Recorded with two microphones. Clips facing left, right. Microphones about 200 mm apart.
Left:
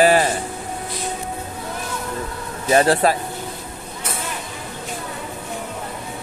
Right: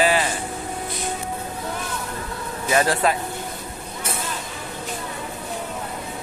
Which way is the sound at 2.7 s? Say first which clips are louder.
Left 4 dB; 35° left (ahead or behind).